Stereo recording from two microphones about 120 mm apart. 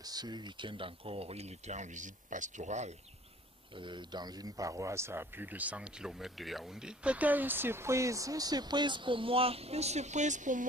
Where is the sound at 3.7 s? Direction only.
40° right (ahead or behind).